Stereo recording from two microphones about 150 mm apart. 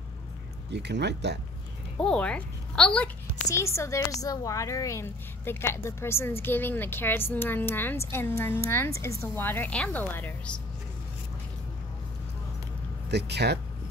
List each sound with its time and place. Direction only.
0.8 s speech: 90° right
2.0 s a woman's voice: 5° left (ahead or behind)
3.4 s a woman's voice: 20° left (ahead or behind)
13.1 s speech: 90° right